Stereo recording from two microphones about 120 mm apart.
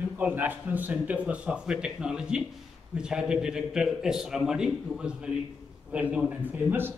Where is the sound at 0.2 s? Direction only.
15° right (ahead or behind).